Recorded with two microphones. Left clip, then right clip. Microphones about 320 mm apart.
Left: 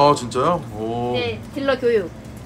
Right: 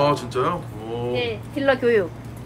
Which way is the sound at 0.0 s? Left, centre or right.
Centre.